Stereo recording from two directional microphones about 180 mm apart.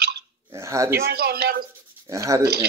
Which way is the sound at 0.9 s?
60° right (ahead or behind).